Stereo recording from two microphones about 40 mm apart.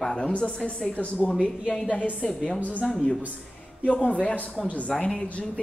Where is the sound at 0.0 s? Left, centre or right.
Centre.